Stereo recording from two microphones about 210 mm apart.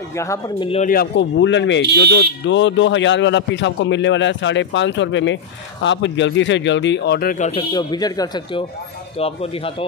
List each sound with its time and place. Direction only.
0.2 s speech: 15° left (ahead or behind)
0.7 s speech: 30° left (ahead or behind)
0.9 s a man's voice: 60° left (ahead or behind); by 7.6 s 35° left (ahead or behind)
7.7 s speech: 20° left (ahead or behind)